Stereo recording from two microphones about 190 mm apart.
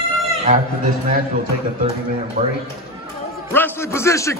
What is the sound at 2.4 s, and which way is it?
Speech, 45° right (ahead or behind).